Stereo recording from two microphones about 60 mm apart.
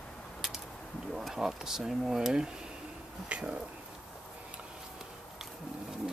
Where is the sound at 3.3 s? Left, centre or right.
Right.